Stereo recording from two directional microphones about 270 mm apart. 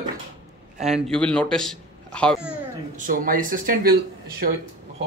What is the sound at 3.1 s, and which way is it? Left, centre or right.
Speech, right.